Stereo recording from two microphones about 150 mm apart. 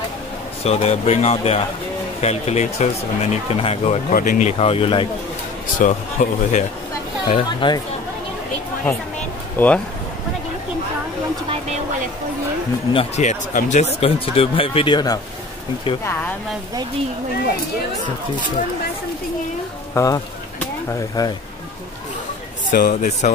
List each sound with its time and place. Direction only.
0.7 s speech: 45° left (ahead or behind)
4.1 s speech: 65° left (ahead or behind); by 5.0 s 40° left (ahead or behind)
5.8 s speech: 55° left (ahead or behind)
7.2 s speech: 35° left (ahead or behind)
9.6 s speech: 10° left (ahead or behind)
12.9 s speech: 50° left (ahead or behind); by 15.1 s 30° left (ahead or behind)
16.0 s speech: 15° left (ahead or behind)
19.9 s speech: 20° left (ahead or behind)
21.2 s speech: 25° left (ahead or behind)
22.7 s speech: 65° left (ahead or behind)